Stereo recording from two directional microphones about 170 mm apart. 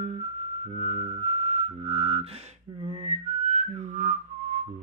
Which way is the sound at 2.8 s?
40° right (ahead or behind).